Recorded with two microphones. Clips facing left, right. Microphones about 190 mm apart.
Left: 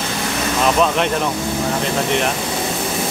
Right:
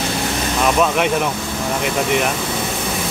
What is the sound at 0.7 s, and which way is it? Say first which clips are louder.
Speech: even; 5° right (ahead or behind).